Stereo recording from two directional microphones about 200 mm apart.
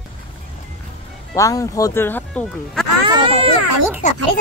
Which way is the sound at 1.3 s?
15° left (ahead or behind).